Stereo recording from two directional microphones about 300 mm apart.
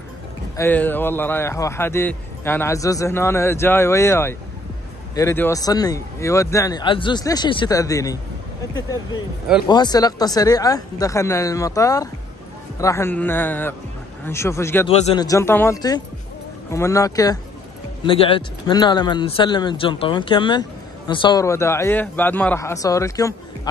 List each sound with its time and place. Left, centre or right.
0.6 s a man's voice: centre
9.7 s a man's voice: centre